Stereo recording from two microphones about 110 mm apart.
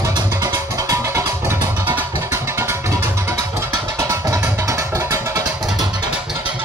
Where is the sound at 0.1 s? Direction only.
30° right (ahead or behind).